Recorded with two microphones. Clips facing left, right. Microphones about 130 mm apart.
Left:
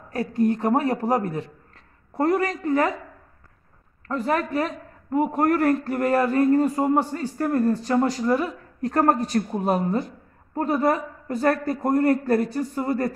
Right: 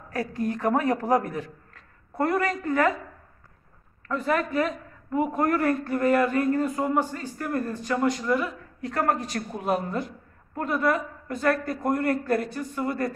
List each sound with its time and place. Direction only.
0.1 s a man's voice: 25° left (ahead or behind)
4.1 s speech: 35° left (ahead or behind)